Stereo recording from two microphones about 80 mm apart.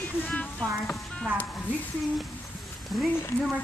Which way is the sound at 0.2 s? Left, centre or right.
Centre.